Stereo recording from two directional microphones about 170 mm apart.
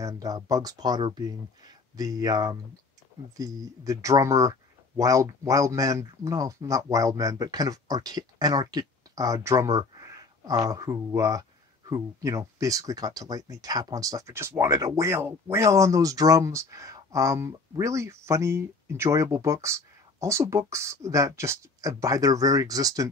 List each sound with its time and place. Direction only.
0.0 s speech: 20° right (ahead or behind)